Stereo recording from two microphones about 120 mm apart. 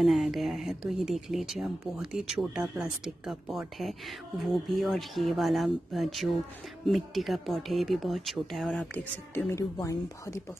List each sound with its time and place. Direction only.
0.0 s speech: centre (ahead or behind)
8.9 s speech: 15° left (ahead or behind)